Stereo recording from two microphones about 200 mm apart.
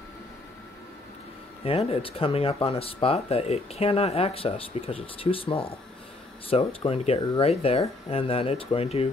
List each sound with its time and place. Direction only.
1.6 s speech: 30° left (ahead or behind)